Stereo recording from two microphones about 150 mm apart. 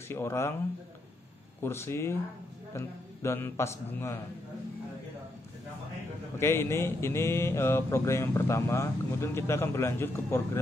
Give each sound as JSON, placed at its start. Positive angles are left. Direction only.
{"t": 0.1, "sound": "speech", "side_deg": 15}
{"t": 1.6, "sound": "speech", "side_deg": 15}
{"t": 6.3, "sound": "speech", "side_deg": 15}